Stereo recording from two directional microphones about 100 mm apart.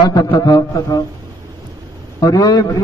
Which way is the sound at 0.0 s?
45° left (ahead or behind).